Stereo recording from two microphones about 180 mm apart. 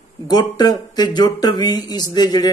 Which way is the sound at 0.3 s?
20° left (ahead or behind).